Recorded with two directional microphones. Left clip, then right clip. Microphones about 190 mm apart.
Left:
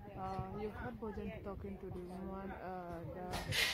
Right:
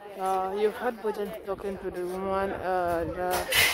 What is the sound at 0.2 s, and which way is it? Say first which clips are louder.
Speech: right 17 dB; 25° right (ahead or behind).